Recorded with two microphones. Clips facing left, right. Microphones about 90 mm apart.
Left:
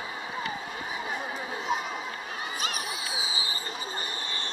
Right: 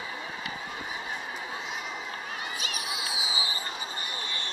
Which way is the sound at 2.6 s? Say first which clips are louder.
Left 2 dB; 40° left (ahead or behind).